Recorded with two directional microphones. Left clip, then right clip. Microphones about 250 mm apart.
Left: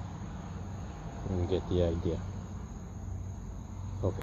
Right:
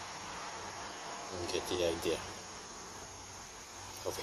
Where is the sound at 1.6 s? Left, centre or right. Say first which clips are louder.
Left 2 dB; right.